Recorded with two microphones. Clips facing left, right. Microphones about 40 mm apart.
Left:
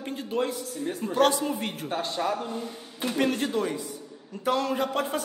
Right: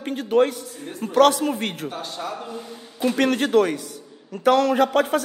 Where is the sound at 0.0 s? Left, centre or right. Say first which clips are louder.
Right 9 dB; right.